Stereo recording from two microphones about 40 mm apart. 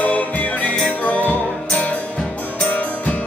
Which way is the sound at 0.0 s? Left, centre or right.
Left.